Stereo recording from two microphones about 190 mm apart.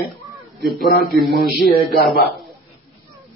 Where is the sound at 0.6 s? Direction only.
Centre (ahead or behind).